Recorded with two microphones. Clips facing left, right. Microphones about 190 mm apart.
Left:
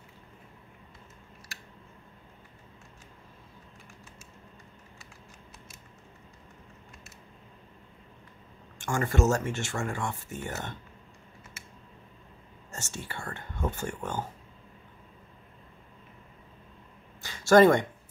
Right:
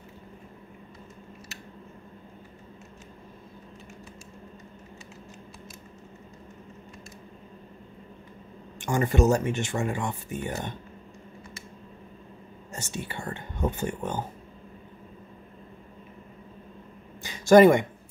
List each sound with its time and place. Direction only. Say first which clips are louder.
8.7 s speech: right 4 dB; 20° right (ahead or behind)
12.9 s speech: right 5 dB; 20° right (ahead or behind)
17.2 s a sound: right 3 dB; 15° right (ahead or behind)